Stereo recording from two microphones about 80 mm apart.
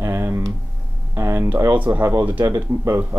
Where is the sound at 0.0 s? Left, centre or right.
Right.